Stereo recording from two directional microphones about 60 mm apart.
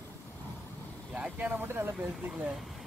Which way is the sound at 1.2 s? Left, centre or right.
Right.